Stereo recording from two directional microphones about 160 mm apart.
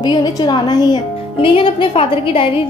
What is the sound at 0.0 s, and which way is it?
A woman's voice, 25° left (ahead or behind).